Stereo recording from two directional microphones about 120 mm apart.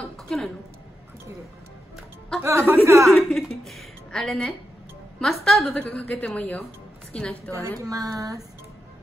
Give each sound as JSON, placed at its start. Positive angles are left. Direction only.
{"t": 0.0, "sound": "a sound", "side_deg": 0}
{"t": 2.4, "sound": "speech", "side_deg": -20}
{"t": 3.1, "sound": "a woman's voice", "side_deg": 0}
{"t": 5.8, "sound": "speech", "side_deg": 15}
{"t": 7.9, "sound": "speech", "side_deg": -30}